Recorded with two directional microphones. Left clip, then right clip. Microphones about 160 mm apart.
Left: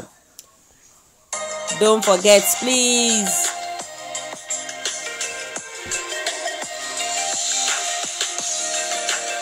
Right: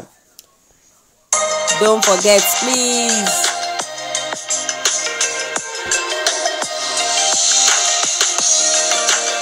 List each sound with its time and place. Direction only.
1.3 s music: 45° right (ahead or behind)
2.9 s music: 60° right (ahead or behind); by 9.4 s 45° right (ahead or behind)